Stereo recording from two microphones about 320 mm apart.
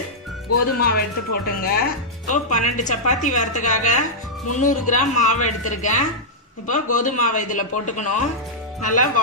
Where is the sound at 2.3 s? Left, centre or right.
Left.